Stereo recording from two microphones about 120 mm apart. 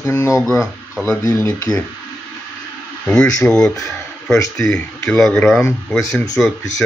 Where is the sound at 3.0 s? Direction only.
5° left (ahead or behind).